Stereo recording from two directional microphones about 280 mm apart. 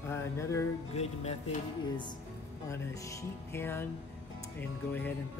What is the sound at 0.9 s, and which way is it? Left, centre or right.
Music, left.